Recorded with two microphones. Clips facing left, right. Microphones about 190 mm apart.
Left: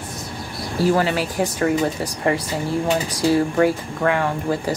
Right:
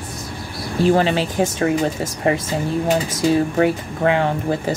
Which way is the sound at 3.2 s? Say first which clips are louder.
Left 1 dB; 20° right (ahead or behind).